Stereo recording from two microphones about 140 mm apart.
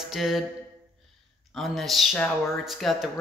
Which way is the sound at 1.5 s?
Centre (ahead or behind).